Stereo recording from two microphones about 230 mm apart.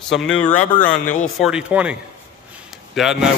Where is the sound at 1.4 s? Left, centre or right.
Centre.